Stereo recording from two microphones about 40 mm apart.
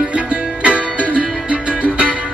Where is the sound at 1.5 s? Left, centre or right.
Right.